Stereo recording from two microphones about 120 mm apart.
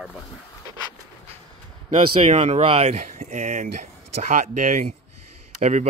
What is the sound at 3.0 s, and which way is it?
Speech, 85° right.